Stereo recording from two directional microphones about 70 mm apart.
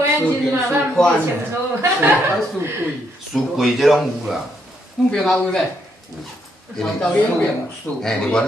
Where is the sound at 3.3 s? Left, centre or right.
Centre.